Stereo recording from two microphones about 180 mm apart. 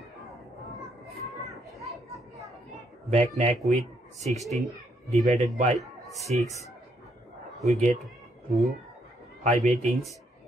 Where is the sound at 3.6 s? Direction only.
40° right (ahead or behind).